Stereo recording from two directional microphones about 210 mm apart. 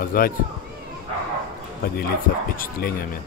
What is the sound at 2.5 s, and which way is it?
Speech, 45° left (ahead or behind).